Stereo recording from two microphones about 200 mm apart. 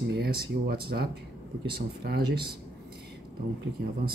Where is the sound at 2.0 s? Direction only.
50° right (ahead or behind).